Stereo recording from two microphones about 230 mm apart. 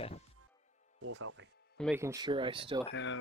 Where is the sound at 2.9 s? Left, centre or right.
Left.